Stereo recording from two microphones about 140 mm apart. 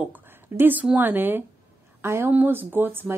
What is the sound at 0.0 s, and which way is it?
Speech, 15° right (ahead or behind).